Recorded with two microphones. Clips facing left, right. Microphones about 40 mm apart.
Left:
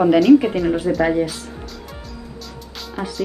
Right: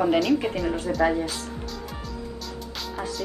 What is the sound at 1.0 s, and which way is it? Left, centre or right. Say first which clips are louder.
Speech: left 2 dB; left.